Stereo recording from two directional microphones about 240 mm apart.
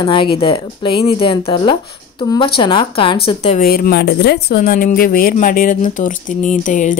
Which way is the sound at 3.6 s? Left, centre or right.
Left.